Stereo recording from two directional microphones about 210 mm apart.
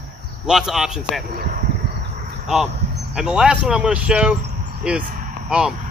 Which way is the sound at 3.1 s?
5° right (ahead or behind).